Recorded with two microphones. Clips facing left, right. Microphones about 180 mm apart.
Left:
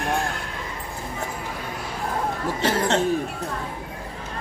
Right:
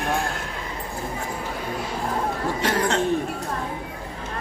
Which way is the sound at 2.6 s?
25° left (ahead or behind).